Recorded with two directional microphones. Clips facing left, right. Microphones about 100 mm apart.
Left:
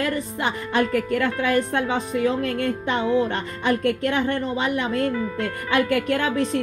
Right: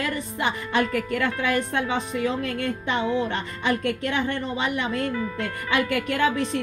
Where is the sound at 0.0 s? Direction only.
40° left (ahead or behind).